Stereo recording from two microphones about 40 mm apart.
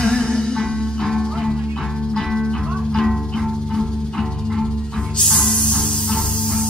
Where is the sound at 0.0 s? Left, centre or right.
Centre.